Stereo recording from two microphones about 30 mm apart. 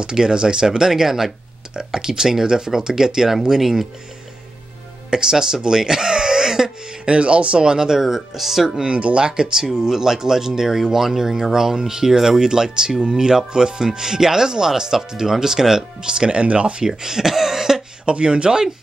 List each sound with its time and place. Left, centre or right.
0.0 s speech: right
5.1 s speech: right
7.1 s speech: right
7.6 s speech: right
7.9 s speech: centre
8.8 s speech: right
9.8 s speech: centre
16.0 s speech: right
16.8 s speech: centre
18.0 s speech: right